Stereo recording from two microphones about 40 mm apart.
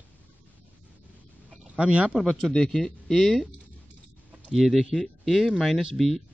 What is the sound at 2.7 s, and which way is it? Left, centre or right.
Speech, centre.